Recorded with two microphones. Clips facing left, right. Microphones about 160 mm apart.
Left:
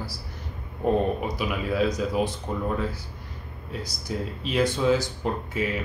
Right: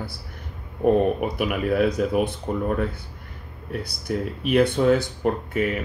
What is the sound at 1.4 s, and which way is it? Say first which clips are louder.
Speech: right 5 dB; 60° right (ahead or behind).